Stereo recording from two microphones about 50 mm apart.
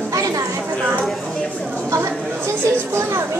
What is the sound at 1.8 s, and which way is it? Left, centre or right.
Chatter, right.